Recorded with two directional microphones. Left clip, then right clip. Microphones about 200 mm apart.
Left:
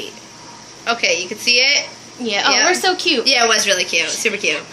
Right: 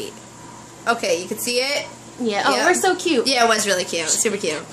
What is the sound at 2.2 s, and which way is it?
Speech, centre (ahead or behind).